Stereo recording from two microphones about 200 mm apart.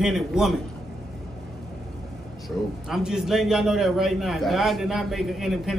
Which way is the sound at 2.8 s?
Centre (ahead or behind).